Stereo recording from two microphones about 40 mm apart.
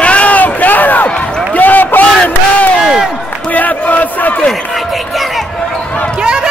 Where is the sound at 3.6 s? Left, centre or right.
Left.